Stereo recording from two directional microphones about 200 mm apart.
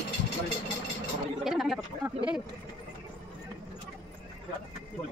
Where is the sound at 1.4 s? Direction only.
Centre (ahead or behind).